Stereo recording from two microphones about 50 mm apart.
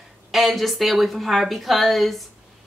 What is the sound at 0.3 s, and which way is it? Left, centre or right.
Speech, centre.